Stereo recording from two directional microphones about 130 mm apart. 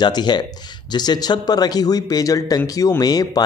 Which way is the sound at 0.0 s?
35° left (ahead or behind).